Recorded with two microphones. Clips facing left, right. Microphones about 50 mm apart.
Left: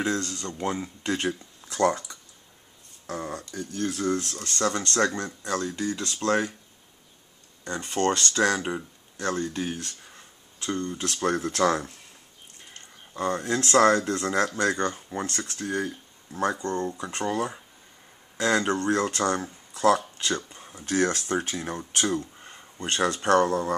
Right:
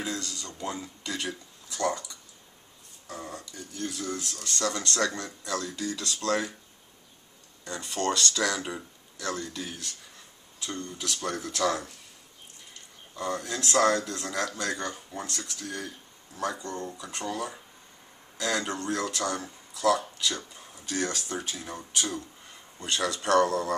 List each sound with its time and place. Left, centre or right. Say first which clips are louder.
0.0 s speech: left 7 dB; left
7.6 s speech: left 4 dB; left
13.1 s speech: left 5 dB; left
16.6 s speech: left 7 dB; left
17.1 s speech: left 4 dB; left